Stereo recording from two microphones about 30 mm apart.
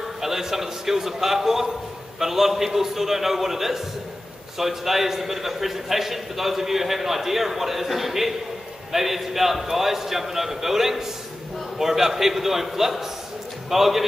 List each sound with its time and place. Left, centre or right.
0.2 s a man's voice: centre